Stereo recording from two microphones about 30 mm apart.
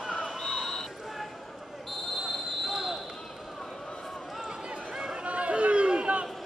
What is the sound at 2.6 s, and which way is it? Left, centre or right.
Basketball bounce, centre.